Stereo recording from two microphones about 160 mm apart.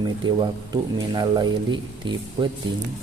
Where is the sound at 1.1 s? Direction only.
30° right (ahead or behind).